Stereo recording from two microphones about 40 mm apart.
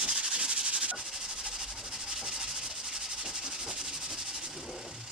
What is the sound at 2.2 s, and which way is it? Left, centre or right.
Rub, centre.